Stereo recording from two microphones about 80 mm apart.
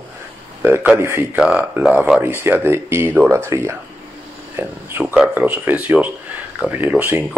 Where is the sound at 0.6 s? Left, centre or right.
Right.